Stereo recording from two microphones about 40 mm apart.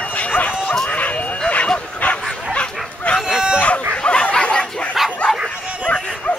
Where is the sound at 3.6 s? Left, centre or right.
Left.